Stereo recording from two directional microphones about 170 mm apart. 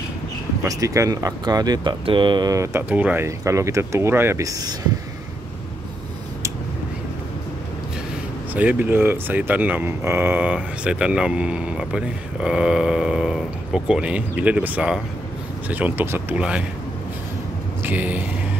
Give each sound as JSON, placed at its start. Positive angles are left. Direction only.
{"t": 0.7, "sound": "speech", "side_deg": -20}
{"t": 2.9, "sound": "speech", "side_deg": -10}
{"t": 8.5, "sound": "speech", "side_deg": -10}
{"t": 17.8, "sound": "speech", "side_deg": -10}